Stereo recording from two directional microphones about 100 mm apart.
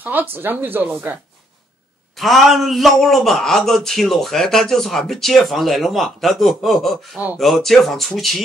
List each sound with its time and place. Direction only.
0.0 s speech: 20° right (ahead or behind)
2.1 s a man's voice: centre (ahead or behind)